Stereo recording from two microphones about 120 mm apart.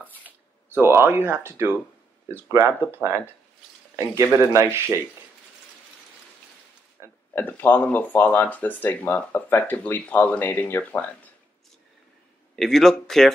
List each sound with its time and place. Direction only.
0.7 s speech: 20° right (ahead or behind)
4.5 s speech: 25° right (ahead or behind)
7.0 s a sound: 25° right (ahead or behind)
7.3 s speech: 15° left (ahead or behind)
12.5 s a man's voice: 5° left (ahead or behind)